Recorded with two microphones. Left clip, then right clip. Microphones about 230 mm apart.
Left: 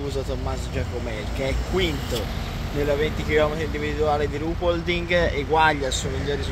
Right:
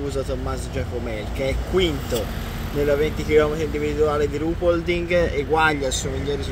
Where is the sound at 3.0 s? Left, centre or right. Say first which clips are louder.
Right 2 dB; centre.